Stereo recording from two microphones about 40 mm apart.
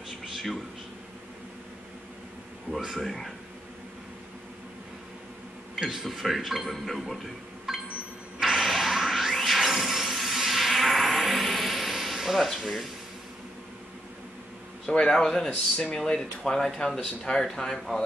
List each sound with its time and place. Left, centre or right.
0.3 s a sound: centre
2.8 s a man's voice: centre
5.8 s a man's voice: centre
7.7 s a sound: centre
12.5 s a man's voice: centre
14.9 s a man's voice: centre